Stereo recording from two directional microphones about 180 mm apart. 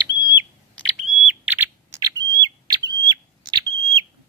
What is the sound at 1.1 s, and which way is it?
Bird, 5° right (ahead or behind).